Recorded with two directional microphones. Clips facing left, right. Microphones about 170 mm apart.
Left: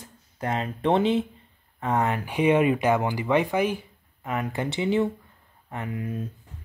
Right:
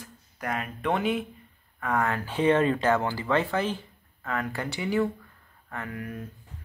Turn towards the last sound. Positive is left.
turn(degrees=20)  # may be behind; listen again after turning